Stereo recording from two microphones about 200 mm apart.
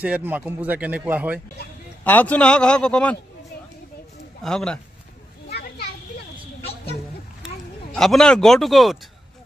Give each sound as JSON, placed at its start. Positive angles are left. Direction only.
{"t": 0.0, "sound": "speech", "side_deg": -10}
{"t": 2.0, "sound": "a man's voice", "side_deg": 10}
{"t": 4.4, "sound": "a man's voice", "side_deg": 5}
{"t": 5.5, "sound": "children playing", "side_deg": 50}
{"t": 7.9, "sound": "a man's voice", "side_deg": 0}